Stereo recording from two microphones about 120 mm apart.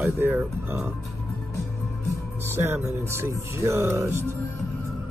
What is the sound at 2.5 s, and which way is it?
Music, 20° right (ahead or behind).